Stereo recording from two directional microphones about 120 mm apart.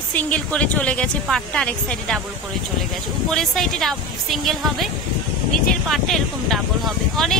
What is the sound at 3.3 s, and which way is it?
A woman's voice, centre (ahead or behind).